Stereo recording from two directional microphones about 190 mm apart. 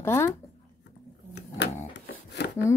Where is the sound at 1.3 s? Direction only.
65° left (ahead or behind).